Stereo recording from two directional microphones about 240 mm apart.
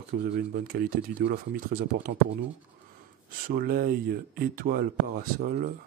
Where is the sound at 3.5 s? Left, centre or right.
Right.